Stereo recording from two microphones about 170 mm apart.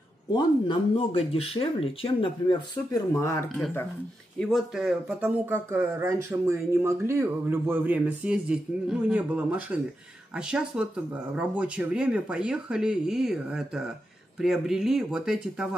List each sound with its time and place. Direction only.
0.3 s speech: 30° left (ahead or behind)
3.2 s speech: 15° left (ahead or behind)
4.4 s speech: centre (ahead or behind)